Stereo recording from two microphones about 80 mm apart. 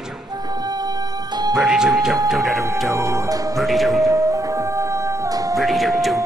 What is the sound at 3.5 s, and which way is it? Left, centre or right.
Speech, centre.